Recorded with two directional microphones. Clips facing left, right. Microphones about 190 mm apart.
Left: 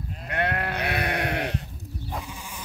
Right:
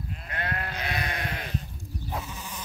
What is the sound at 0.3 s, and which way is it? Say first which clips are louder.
Sheep: left 7 dB; 65° left (ahead or behind).